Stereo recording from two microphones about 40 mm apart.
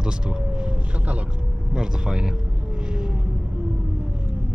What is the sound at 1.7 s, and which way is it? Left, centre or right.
Speech, centre.